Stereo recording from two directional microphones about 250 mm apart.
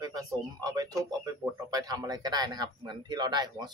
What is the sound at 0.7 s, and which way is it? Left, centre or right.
Speech, centre.